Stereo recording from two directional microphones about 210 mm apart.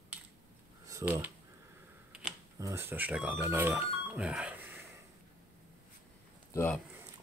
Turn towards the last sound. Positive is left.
turn(degrees=10)  # may be behind; listen again after turning